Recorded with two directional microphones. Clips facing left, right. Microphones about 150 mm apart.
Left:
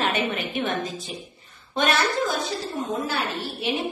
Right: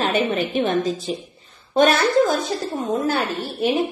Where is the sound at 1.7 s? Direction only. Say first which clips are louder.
Right 7 dB; 45° right (ahead or behind).